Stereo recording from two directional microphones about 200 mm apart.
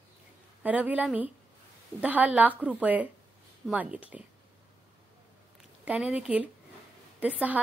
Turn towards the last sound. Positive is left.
turn(degrees=-5)  # may be behind; listen again after turning